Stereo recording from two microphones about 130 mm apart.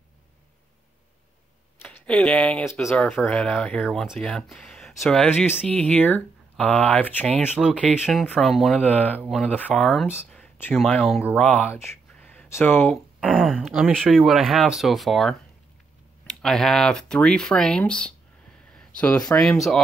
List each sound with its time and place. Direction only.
1.8 s speech: 10° left (ahead or behind)
7.6 s speech: 10° right (ahead or behind)
8.8 s speech: 10° left (ahead or behind)
9.2 s speech: 5° right (ahead or behind)
10.3 s a sound: 10° left (ahead or behind)
10.7 s speech: centre (ahead or behind)
11.3 s speech: 10° left (ahead or behind)
12.1 s a sound: 10° left (ahead or behind)
13.3 s speech: 5° left (ahead or behind)
18.7 s a sound: 5° left (ahead or behind)
19.4 s speech: centre (ahead or behind)